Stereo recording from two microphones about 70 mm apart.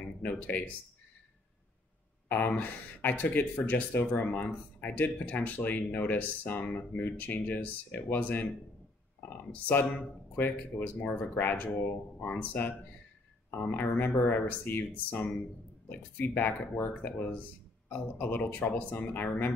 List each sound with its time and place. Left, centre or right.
0.2 s speech: left
2.2 s speech: left
9.5 s speech: left